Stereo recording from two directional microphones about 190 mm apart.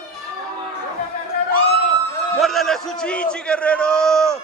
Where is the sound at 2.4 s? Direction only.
Centre (ahead or behind).